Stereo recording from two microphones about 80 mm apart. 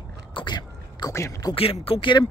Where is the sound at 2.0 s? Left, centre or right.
Left.